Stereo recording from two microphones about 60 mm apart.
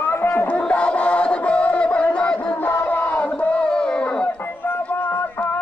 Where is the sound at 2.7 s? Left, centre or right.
Left.